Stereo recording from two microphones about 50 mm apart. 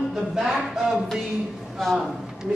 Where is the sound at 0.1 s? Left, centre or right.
Centre.